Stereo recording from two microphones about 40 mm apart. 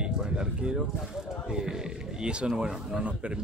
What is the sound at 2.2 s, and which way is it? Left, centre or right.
Speech, right.